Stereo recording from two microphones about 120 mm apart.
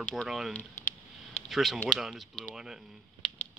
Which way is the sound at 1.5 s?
Centre (ahead or behind).